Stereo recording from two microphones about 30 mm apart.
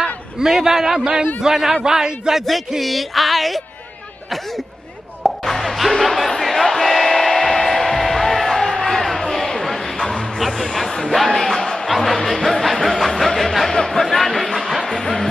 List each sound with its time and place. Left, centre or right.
0.4 s a man's voice: centre
2.8 s music: centre
5.4 s a sound: centre
6.4 s music: centre
10.0 s music: centre
10.4 s music: centre
10.9 s a sound: centre
11.6 s music: centre
11.9 s music: centre
12.7 s a sound: centre
14.0 s music: centre